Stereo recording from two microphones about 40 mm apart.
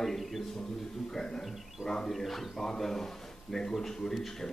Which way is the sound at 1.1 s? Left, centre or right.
Centre.